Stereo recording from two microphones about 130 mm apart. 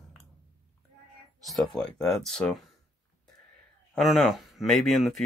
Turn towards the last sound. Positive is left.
turn(degrees=0)  # may be behind; listen again after turning